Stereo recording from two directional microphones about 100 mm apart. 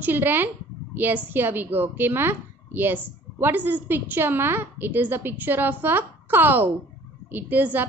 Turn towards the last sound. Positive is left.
turn(degrees=-20)  # may be behind; listen again after turning